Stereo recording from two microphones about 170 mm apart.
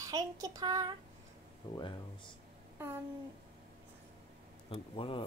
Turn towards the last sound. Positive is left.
turn(degrees=30)  # may be behind; listen again after turning